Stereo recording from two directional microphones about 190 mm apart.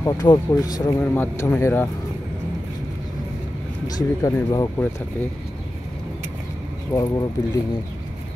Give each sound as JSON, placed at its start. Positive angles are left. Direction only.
{"t": 0.0, "sound": "speech", "side_deg": 20}
{"t": 3.8, "sound": "speech", "side_deg": 20}
{"t": 6.9, "sound": "speech", "side_deg": 15}